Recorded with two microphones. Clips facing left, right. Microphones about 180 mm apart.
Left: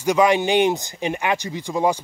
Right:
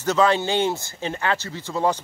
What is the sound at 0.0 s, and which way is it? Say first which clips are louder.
Speech: left 2 dB; 15° left (ahead or behind).